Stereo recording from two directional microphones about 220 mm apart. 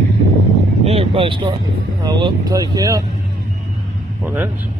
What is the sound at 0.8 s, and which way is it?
Vehicle, 25° right (ahead or behind).